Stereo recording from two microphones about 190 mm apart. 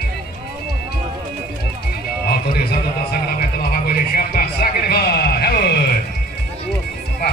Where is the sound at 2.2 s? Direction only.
55° left (ahead or behind).